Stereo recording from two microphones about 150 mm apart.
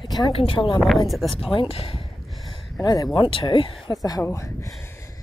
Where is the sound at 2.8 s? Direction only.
25° left (ahead or behind).